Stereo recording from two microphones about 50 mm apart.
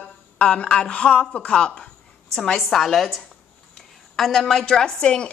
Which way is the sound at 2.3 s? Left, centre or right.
Centre.